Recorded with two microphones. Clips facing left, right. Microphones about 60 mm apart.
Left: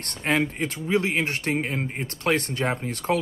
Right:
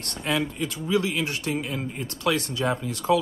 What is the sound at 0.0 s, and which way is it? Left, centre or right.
Speech, left.